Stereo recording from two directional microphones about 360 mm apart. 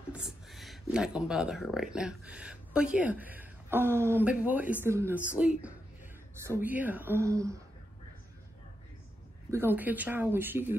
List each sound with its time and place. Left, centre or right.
0.1 s speech: centre
9.5 s speech: centre